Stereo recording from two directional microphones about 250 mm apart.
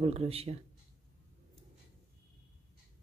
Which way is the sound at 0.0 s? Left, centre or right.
Right.